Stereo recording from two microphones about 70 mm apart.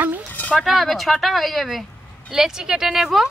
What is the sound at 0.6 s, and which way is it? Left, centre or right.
A woman's voice, centre.